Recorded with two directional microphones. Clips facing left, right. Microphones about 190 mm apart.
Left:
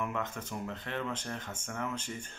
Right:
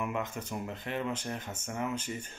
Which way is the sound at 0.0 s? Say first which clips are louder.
Right 1 dB; 10° right (ahead or behind).